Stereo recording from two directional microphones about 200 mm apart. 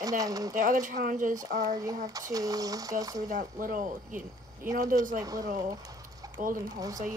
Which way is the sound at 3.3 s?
40° right (ahead or behind).